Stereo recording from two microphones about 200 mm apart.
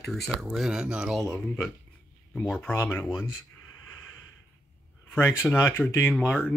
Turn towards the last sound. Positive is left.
turn(degrees=5)  # may be behind; listen again after turning